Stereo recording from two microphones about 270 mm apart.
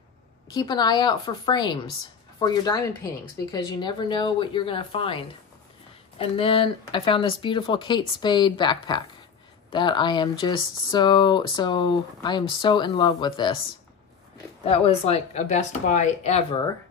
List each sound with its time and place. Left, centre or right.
0.5 s speech: centre
14.6 s speech: left